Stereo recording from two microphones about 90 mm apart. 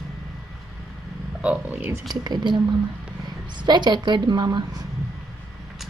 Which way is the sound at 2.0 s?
50° right (ahead or behind).